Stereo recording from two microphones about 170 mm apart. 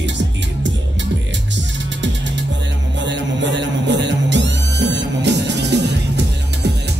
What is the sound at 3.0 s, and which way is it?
Music, 90° right.